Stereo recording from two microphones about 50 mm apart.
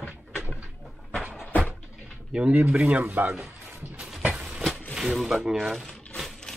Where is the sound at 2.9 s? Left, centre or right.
Right.